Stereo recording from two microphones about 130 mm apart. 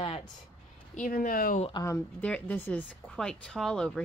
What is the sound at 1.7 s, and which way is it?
Speech, 30° left (ahead or behind).